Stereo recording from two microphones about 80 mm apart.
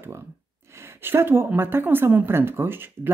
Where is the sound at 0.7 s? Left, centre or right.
Right.